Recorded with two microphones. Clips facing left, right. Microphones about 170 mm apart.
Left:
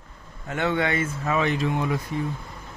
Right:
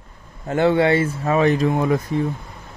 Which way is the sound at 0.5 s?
35° right (ahead or behind).